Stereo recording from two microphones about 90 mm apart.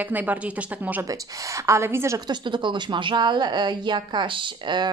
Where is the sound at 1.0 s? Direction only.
35° right (ahead or behind).